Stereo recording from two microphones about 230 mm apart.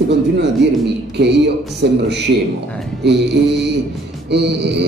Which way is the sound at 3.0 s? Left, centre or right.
Right.